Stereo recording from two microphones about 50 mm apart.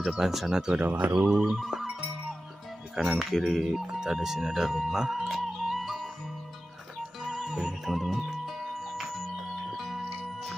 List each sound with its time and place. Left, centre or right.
0.2 s speech: centre
0.7 s speech: right
1.3 s music: centre
3.0 s music: centre
3.9 s speech: centre
5.2 s music: centre
7.2 s music: centre